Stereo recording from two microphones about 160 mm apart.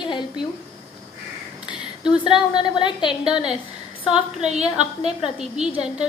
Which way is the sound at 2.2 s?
30° left (ahead or behind).